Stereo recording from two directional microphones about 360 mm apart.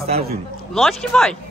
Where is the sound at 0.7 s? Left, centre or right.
Centre.